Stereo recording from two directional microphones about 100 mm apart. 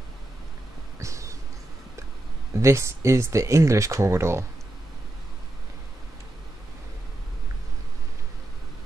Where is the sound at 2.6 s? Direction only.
30° right (ahead or behind).